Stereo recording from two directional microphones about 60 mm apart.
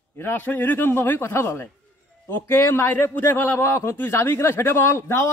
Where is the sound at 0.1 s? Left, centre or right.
Left.